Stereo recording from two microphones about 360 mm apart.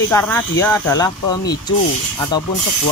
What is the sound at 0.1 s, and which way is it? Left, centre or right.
Speech, centre.